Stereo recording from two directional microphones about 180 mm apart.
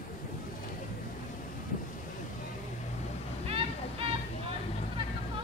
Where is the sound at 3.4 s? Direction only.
30° right (ahead or behind).